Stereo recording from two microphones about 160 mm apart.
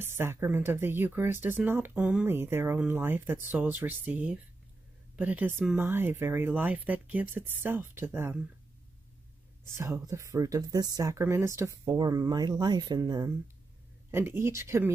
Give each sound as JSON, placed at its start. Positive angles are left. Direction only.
{"t": 0.2, "sound": "speech", "side_deg": -15}
{"t": 9.8, "sound": "speech", "side_deg": -20}